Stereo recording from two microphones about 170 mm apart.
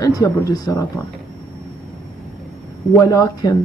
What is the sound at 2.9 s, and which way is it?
Speech, 20° left (ahead or behind).